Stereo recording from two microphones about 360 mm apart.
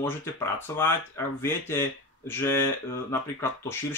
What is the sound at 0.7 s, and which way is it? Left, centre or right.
Speech, centre.